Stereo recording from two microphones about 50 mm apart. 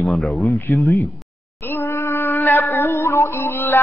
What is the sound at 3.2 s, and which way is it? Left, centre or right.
Music, left.